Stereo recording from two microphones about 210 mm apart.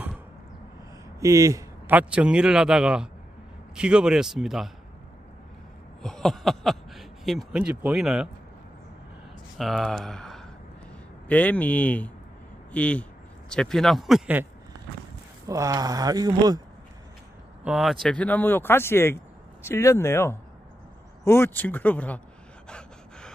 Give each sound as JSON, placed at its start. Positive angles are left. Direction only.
{"t": 1.2, "sound": "speech", "side_deg": -15}
{"t": 6.0, "sound": "speech", "side_deg": 0}
{"t": 9.6, "sound": "speech", "side_deg": 0}
{"t": 17.6, "sound": "speech", "side_deg": 0}
{"t": 22.7, "sound": "gasp", "side_deg": 5}